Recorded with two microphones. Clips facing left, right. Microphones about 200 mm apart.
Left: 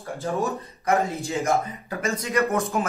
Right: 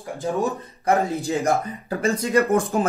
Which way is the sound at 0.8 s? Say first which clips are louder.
Right 3 dB; 35° right (ahead or behind).